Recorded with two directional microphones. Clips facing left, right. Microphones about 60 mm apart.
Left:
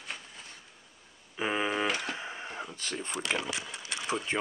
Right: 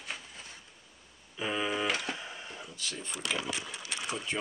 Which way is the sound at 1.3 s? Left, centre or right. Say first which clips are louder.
Left 2 dB; left.